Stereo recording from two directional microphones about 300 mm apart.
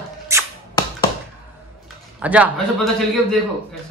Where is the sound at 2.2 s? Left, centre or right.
Centre.